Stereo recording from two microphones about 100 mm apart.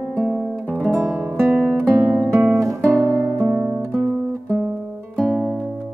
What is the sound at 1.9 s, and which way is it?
Guitar, 20° right (ahead or behind).